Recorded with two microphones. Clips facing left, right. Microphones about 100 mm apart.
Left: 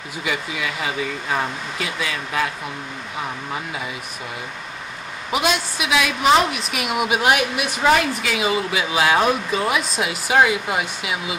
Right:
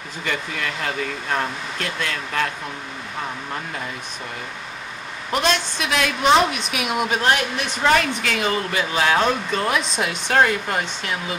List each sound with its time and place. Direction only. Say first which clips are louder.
0.2 s a woman's voice: left 1 dB; 5° left (ahead or behind)
3.5 s a woman's voice: left 1 dB; 5° left (ahead or behind)
5.3 s a woman's voice: even; 5° left (ahead or behind)